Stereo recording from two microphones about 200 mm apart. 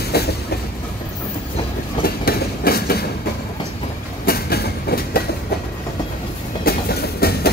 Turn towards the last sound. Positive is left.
turn(degrees=50)  # may be behind; listen again after turning